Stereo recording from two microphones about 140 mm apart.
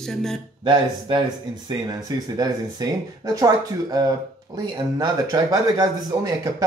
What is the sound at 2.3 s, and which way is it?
A man's voice, 25° right (ahead or behind).